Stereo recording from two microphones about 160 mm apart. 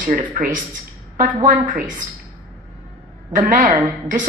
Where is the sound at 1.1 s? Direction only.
55° right (ahead or behind).